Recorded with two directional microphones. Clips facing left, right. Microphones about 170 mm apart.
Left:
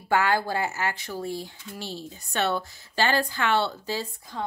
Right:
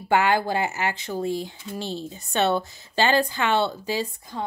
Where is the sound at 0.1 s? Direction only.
20° right (ahead or behind).